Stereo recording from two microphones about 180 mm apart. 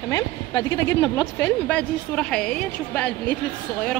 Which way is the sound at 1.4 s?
5° left (ahead or behind).